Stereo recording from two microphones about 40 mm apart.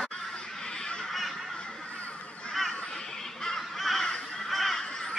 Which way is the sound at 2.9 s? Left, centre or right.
Centre.